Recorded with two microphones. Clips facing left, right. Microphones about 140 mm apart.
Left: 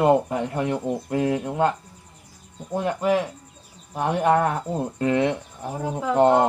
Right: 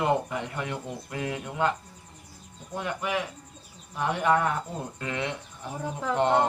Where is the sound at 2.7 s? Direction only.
35° left (ahead or behind).